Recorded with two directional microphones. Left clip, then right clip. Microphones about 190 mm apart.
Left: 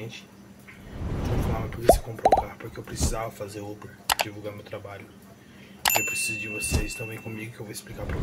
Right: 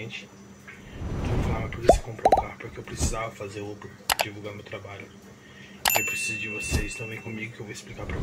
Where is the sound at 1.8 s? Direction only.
Centre (ahead or behind).